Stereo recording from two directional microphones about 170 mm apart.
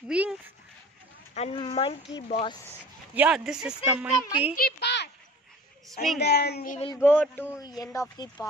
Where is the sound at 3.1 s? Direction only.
5° right (ahead or behind).